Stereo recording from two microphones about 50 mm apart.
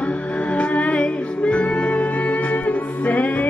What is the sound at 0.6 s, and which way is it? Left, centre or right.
Music, left.